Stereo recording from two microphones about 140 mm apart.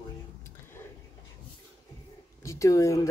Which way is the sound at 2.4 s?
25° left (ahead or behind).